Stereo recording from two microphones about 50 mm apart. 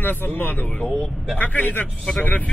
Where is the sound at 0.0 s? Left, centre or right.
Left.